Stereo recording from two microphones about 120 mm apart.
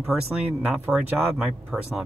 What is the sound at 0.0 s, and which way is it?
Speech, 10° right (ahead or behind).